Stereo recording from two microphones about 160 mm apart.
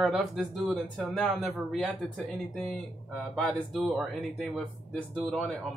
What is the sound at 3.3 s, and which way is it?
Speech, centre (ahead or behind).